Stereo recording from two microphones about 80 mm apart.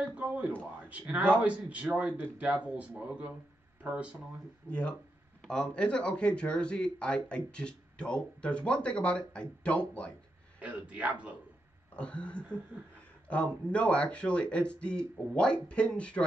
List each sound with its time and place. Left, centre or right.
0.0 s a man's voice: centre
4.6 s speech: centre
10.6 s speech: centre
11.9 s speech: centre